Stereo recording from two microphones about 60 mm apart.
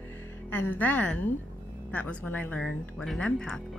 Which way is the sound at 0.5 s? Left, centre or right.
Left.